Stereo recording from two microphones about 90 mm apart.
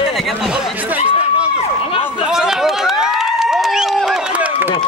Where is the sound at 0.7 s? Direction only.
20° right (ahead or behind).